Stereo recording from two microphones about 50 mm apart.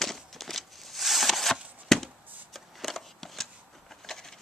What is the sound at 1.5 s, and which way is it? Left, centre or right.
Shuffling cards, right.